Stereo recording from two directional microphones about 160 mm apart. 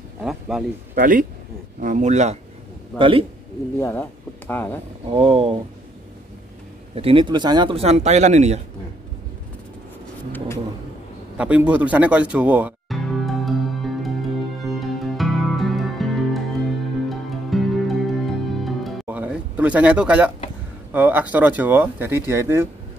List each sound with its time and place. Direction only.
0.2 s speech: 5° right (ahead or behind)
0.9 s a man's voice: 60° right (ahead or behind); by 2.3 s 45° right (ahead or behind)
3.0 s speech: 35° right (ahead or behind)
3.8 s speech: 10° left (ahead or behind)
5.1 s speech: 35° right (ahead or behind)
7.0 s speech: 35° right (ahead or behind)
11.3 s speech: 10° right (ahead or behind)
12.9 s music: centre (ahead or behind)
19.0 s a sound: 10° right (ahead or behind)
20.9 s speech: 10° right (ahead or behind)